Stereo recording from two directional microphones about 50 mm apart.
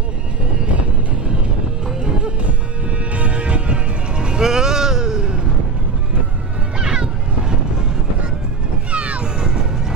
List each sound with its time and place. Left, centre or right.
2.0 s music: centre
6.8 s music: centre
8.9 s music: right
9.4 s music: centre